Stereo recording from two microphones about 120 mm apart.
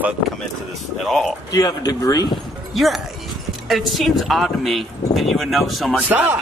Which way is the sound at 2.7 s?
Centre (ahead or behind).